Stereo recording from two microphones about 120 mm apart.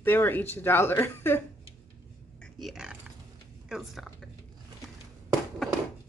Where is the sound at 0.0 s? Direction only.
15° left (ahead or behind).